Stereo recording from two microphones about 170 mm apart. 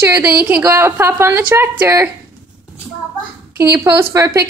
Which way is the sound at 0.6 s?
15° right (ahead or behind).